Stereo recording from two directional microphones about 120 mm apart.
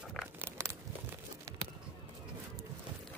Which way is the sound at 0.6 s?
20° right (ahead or behind).